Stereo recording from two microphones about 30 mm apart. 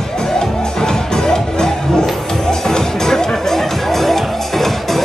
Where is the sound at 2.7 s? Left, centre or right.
Centre.